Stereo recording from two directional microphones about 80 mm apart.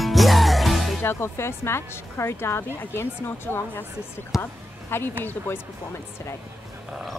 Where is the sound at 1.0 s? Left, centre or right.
Left.